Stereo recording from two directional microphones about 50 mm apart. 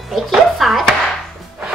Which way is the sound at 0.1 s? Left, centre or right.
Centre.